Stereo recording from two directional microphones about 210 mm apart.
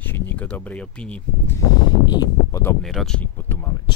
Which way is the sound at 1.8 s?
20° left (ahead or behind).